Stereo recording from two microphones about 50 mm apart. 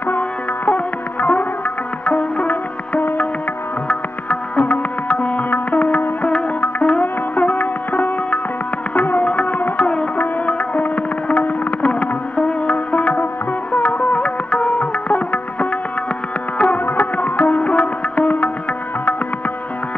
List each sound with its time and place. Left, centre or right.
0.7 s music: left